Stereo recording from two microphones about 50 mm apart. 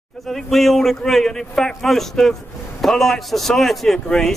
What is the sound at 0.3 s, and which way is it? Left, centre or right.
A man's voice, centre.